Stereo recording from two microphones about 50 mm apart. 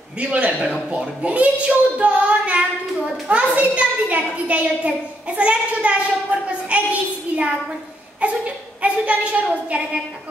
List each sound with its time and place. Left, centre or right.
0.2 s a child's voice: right
8.8 s a child's voice: right